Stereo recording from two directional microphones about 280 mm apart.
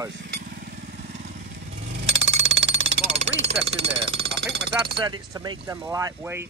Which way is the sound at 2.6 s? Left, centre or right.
Right.